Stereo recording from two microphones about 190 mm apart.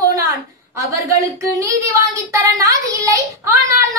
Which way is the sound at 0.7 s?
15° right (ahead or behind).